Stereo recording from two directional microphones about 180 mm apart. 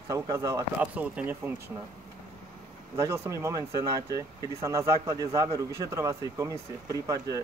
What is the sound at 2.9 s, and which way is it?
A man's voice, 15° right (ahead or behind).